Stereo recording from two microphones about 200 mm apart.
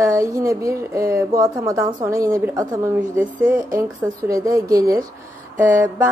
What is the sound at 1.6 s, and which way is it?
A woman's voice, 15° right (ahead or behind).